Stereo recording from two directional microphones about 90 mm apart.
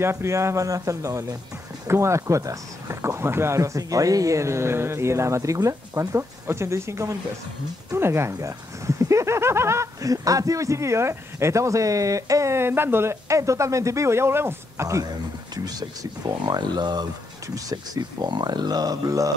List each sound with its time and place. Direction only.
0.0 s speech: 30° right (ahead or behind)